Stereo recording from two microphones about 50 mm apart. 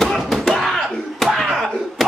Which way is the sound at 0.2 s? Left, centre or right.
Centre.